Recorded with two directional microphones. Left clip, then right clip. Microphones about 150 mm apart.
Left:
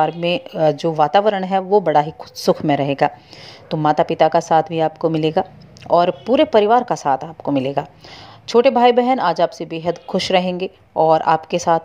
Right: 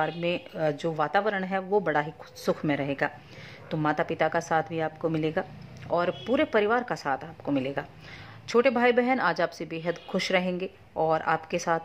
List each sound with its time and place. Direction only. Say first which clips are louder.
0.0 s speech: left 10 dB; 35° left (ahead or behind)